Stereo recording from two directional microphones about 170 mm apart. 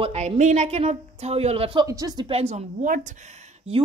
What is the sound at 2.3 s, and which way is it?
Speech, 40° right (ahead or behind).